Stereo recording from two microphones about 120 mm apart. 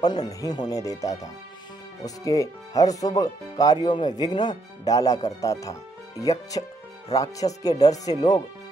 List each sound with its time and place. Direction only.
0.0 s speech: 35° left (ahead or behind)
7.6 s speech: 30° left (ahead or behind)